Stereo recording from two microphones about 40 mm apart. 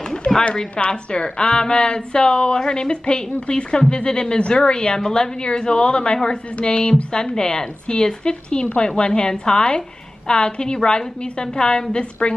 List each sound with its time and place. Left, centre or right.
0.5 s a woman's voice: left